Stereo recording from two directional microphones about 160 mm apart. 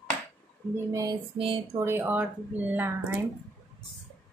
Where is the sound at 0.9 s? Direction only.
20° right (ahead or behind).